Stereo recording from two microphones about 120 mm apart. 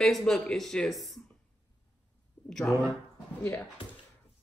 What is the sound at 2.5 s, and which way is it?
Speech, 5° left (ahead or behind).